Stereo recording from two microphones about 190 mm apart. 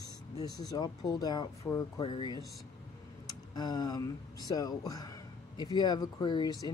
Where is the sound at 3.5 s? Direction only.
20° left (ahead or behind).